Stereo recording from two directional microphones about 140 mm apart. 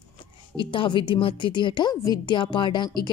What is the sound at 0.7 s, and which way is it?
A woman's voice, 35° left (ahead or behind).